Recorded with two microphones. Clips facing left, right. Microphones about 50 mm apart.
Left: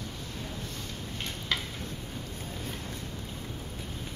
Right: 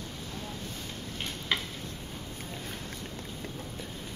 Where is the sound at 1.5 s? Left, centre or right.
Centre.